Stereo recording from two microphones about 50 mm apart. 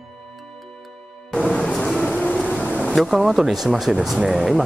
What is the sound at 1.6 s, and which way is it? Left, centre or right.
Vehicle, centre.